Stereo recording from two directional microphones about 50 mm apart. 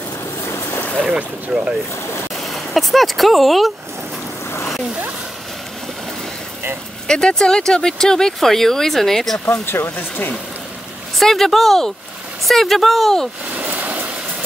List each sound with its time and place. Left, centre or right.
0.5 s boat: left
1.0 s speech: centre
2.3 s speech: centre
7.1 s speech: centre
9.5 s speech: left
9.9 s speech: left
11.1 s speech: centre
13.6 s a sound: right